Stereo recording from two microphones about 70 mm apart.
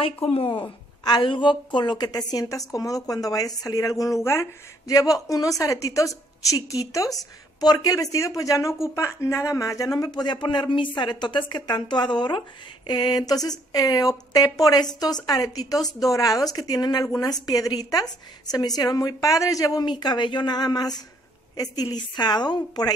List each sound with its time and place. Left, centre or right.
1.7 s speech: left
4.2 s speech: left
4.8 s speech: left
8.9 s speech: left
17.0 s speech: left
18.5 s a woman's voice: left
21.9 s speech: left